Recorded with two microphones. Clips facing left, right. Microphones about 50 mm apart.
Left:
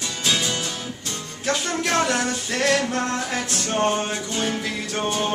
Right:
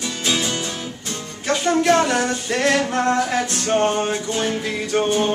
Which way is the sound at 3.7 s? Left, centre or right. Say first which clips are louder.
Right 3 dB; centre.